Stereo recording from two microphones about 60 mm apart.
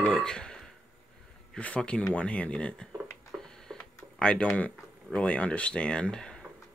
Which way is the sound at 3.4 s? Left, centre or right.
Centre.